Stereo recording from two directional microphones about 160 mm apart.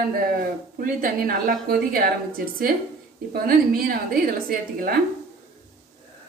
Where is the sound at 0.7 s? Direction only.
60° right (ahead or behind).